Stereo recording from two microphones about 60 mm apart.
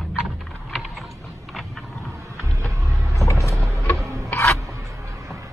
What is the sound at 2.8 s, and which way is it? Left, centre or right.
Vehicle, right.